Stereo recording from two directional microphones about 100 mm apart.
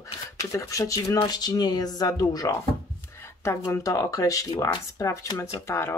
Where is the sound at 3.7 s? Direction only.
35° left (ahead or behind).